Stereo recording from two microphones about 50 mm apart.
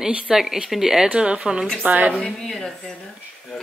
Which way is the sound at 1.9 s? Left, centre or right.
Right.